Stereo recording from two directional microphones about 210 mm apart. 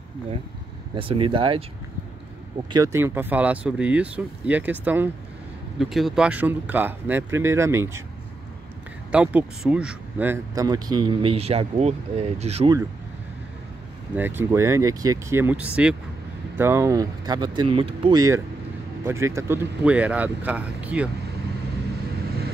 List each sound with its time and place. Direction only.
0.9 s speech: 25° right (ahead or behind)
2.7 s speech: 15° right (ahead or behind)
9.1 s speech: 5° right (ahead or behind); by 12.7 s 30° right (ahead or behind)
14.1 s speech: 10° right (ahead or behind)